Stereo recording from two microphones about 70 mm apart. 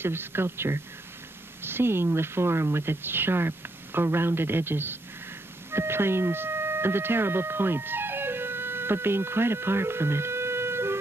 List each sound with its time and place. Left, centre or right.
0.0 s a woman's voice: right